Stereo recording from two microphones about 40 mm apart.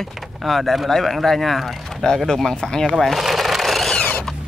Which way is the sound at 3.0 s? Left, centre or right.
Centre.